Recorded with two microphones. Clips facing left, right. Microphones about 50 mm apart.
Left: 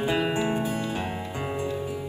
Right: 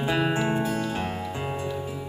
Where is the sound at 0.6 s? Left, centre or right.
Left.